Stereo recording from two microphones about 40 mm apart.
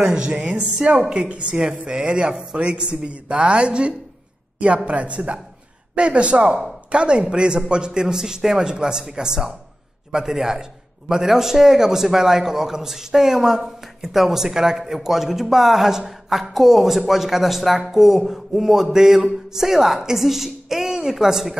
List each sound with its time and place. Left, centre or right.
0.0 s a man's voice: right